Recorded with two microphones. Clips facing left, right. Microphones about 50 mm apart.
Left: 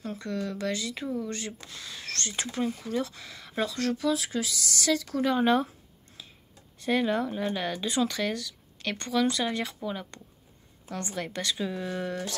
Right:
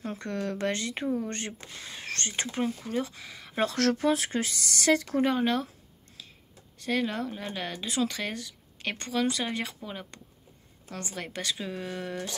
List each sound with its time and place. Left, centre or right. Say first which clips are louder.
0.1 s speech: even; right
1.7 s speech: right 1 dB; right
2.8 s a woman's voice: left 1 dB; centre
3.6 s speech: right 4 dB; right
3.9 s speech: right 1 dB; right
5.4 s speech: left 4 dB; centre
6.2 s a sound: left 1 dB; centre
6.8 s speech: left 3 dB; centre
8.5 s a woman's voice: left 1 dB; centre